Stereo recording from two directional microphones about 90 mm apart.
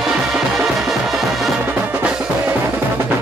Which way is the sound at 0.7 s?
5° right (ahead or behind).